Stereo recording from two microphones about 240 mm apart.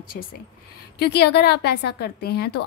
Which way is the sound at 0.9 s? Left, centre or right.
Left.